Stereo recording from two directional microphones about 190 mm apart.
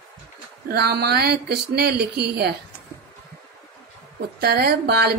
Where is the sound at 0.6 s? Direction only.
55° right (ahead or behind).